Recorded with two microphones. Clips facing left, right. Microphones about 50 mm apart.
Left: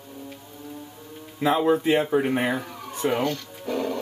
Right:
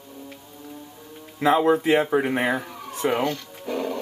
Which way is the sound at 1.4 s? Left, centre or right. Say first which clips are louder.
Right 2 dB; right.